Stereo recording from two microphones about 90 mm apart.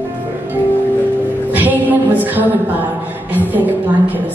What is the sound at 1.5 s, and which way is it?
Music, 20° right (ahead or behind).